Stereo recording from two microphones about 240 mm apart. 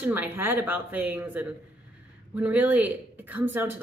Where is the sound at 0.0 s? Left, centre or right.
Centre.